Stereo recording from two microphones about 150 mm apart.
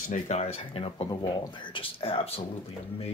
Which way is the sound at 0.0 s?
60° left (ahead or behind).